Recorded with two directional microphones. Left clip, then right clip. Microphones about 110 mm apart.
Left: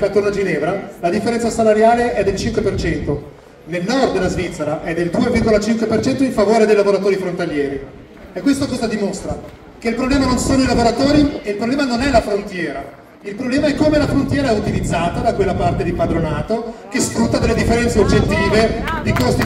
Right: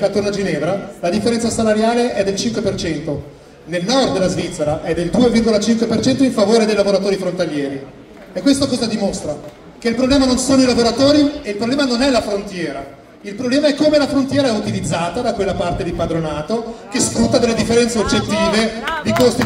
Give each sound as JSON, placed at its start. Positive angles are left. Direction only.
{"t": 0.0, "sound": "speech", "side_deg": -15}
{"t": 3.1, "sound": "a man's voice", "side_deg": -5}
{"t": 3.7, "sound": "speech", "side_deg": -15}
{"t": 8.5, "sound": "speech", "side_deg": -15}
{"t": 13.4, "sound": "speech", "side_deg": -15}